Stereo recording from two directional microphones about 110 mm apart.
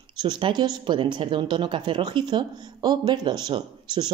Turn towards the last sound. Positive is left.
turn(degrees=-40)  # may be behind; listen again after turning